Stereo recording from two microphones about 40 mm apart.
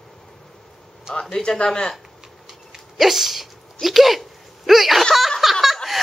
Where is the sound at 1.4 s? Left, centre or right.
Left.